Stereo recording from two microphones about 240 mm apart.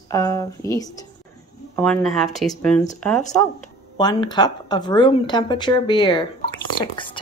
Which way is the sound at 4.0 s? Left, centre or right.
Centre.